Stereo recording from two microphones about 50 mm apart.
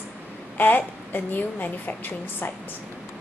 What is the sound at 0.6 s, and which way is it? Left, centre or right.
A woman's voice, left.